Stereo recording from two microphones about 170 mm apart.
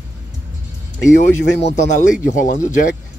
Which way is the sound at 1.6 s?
40° left (ahead or behind).